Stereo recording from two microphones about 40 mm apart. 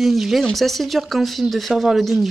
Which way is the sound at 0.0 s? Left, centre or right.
Centre.